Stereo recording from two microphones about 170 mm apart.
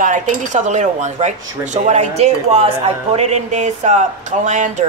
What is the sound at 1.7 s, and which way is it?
Speech, 45° right (ahead or behind).